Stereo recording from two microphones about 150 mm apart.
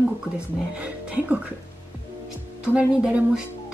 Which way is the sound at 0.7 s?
10° right (ahead or behind).